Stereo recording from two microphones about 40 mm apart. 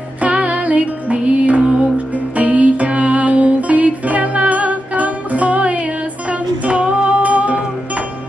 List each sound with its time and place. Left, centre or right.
0.2 s music: right
1.6 s music: right
2.3 s music: right